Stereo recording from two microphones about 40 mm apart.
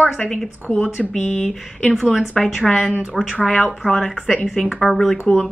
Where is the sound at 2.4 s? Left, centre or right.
Centre.